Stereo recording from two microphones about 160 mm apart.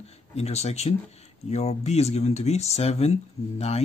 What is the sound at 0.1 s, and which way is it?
Speech, 40° left (ahead or behind).